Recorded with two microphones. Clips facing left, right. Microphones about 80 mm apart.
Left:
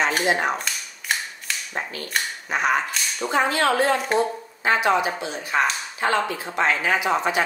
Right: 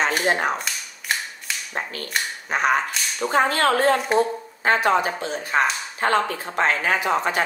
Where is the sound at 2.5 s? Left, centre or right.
Right.